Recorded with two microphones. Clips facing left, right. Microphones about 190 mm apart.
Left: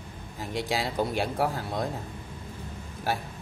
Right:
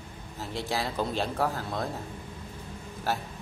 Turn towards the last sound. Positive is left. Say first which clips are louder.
# left 1 dB
turn(degrees=15)  # may be behind; listen again after turning